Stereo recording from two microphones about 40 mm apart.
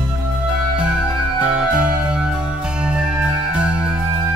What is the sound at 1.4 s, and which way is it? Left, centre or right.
Music, right.